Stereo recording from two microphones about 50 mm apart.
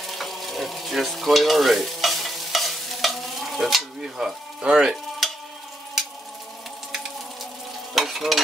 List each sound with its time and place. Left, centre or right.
0.2 s stir: centre
4.6 s speech: centre
5.2 s frying: centre
7.9 s stir: centre